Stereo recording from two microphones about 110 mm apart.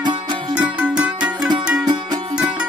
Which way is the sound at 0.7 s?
10° right (ahead or behind).